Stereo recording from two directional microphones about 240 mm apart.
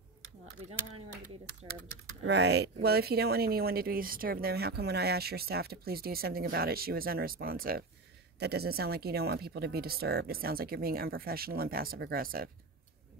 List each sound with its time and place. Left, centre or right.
2.2 s speech: right